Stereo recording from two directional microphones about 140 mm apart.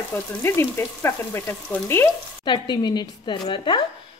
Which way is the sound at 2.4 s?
30° left (ahead or behind).